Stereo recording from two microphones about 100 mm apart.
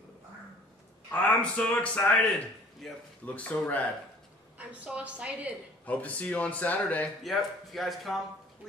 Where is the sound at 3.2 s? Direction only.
15° left (ahead or behind).